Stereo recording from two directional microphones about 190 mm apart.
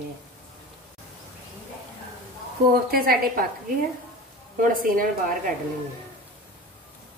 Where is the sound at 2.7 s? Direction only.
50° right (ahead or behind).